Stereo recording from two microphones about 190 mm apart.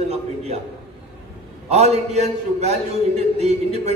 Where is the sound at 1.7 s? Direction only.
35° right (ahead or behind).